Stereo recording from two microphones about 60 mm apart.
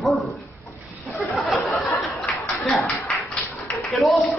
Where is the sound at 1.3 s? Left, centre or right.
Centre.